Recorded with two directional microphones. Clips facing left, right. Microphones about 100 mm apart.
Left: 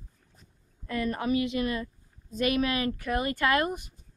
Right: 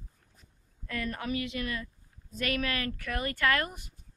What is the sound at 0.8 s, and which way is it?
Speech, 20° left (ahead or behind).